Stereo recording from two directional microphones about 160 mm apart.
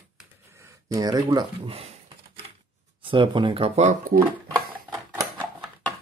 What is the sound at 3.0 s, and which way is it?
Speech, 30° right (ahead or behind).